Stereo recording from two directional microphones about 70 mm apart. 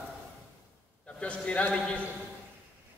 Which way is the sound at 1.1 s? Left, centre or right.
Centre.